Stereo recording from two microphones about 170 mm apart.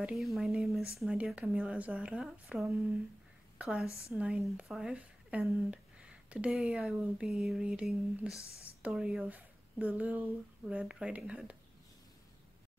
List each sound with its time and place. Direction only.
0.0 s speech: centre (ahead or behind)